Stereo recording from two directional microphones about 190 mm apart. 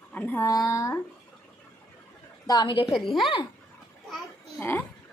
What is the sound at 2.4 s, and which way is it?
Speech, 20° left (ahead or behind).